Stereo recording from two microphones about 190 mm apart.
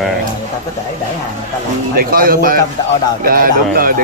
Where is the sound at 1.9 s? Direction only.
50° right (ahead or behind).